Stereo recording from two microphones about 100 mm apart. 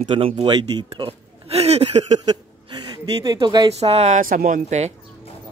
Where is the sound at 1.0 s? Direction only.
90° right.